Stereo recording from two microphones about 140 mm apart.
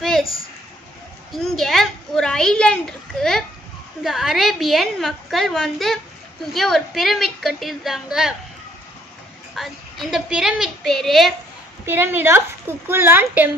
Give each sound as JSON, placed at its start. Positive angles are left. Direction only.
{"t": 1.3, "sound": "a child's voice", "side_deg": 0}
{"t": 9.6, "sound": "a woman's voice", "side_deg": 0}
{"t": 11.8, "sound": "speech", "side_deg": -15}